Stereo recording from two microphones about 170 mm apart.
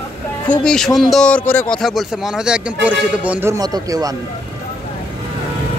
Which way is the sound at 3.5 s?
20° right (ahead or behind).